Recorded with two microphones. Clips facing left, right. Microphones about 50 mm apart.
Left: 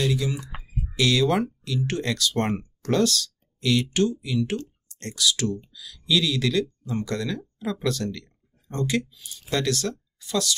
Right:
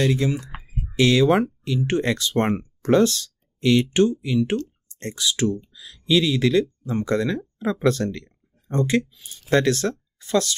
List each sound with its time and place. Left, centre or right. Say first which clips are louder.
0.0 s speech: right 4 dB; right
0.5 s a sound: even; right
1.9 s speech: right 5 dB; right